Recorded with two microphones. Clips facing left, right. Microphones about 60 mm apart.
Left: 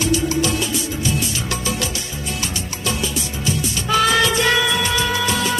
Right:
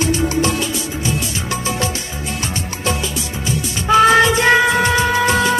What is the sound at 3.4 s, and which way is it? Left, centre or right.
Music of bollywood, right.